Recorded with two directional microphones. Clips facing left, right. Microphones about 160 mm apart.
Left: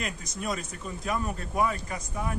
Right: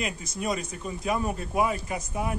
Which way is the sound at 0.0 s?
5° right (ahead or behind).